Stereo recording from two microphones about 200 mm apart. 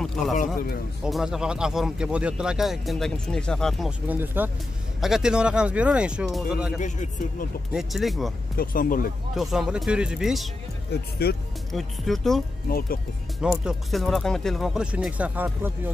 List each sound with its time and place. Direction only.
0.0 s a sound: centre (ahead or behind)
1.0 s speech: 5° right (ahead or behind)
4.2 s speech: 10° right (ahead or behind)
6.8 s speech: 40° left (ahead or behind)
7.7 s speech: centre (ahead or behind)
8.5 s speech: 45° left (ahead or behind)
9.3 s speech: centre (ahead or behind)
10.9 s speech: 50° left (ahead or behind)
11.7 s speech: centre (ahead or behind)
12.6 s speech: 45° left (ahead or behind)
13.4 s speech: centre (ahead or behind)